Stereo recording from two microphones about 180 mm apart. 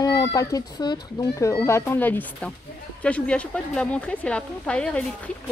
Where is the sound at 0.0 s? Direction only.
20° left (ahead or behind).